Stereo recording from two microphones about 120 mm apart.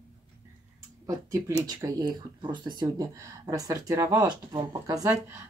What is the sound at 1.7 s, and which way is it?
Speech, 30° right (ahead or behind).